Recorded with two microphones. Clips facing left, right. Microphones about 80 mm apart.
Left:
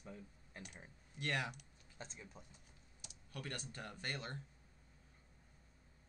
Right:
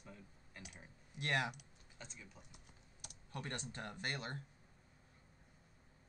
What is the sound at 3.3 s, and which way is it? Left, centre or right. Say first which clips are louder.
Speech: right 2 dB; right.